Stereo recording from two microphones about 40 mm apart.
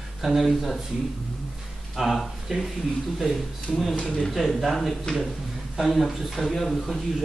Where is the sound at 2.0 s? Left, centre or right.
Centre.